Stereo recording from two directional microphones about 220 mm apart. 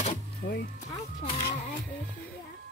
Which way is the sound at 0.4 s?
45° left (ahead or behind).